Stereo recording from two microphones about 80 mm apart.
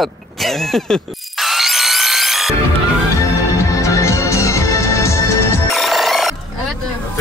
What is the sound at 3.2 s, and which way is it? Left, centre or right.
Music, left.